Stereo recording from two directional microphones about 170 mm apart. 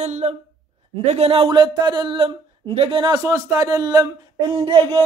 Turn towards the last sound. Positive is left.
turn(degrees=-30)  # may be behind; listen again after turning